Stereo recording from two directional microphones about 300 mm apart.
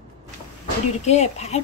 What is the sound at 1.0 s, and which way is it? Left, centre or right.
Speech, left.